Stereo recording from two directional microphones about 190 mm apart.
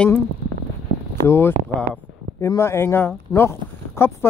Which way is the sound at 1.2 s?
10° left (ahead or behind).